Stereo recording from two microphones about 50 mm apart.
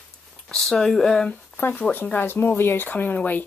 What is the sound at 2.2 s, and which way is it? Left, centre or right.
Speech, left.